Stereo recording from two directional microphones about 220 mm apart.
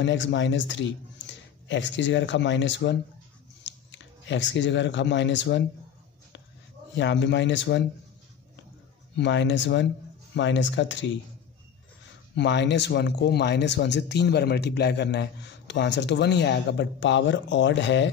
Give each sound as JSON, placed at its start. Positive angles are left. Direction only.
{"t": 0.0, "sound": "speech", "side_deg": 55}
{"t": 7.0, "sound": "speech", "side_deg": 55}
{"t": 9.1, "sound": "speech", "side_deg": 55}
{"t": 12.4, "sound": "speech", "side_deg": 55}